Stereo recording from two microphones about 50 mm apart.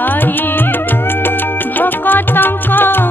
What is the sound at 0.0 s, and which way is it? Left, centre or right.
Music, left.